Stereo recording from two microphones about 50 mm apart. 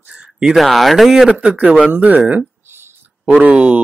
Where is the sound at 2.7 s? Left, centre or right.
Right.